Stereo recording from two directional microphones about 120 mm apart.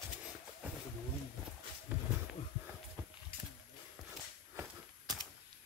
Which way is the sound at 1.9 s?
15° right (ahead or behind).